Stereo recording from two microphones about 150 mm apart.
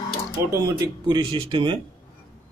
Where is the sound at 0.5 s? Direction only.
25° right (ahead or behind).